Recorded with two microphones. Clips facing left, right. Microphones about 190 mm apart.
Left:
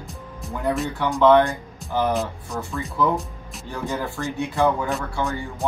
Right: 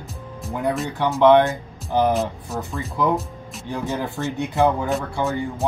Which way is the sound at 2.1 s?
Centre (ahead or behind).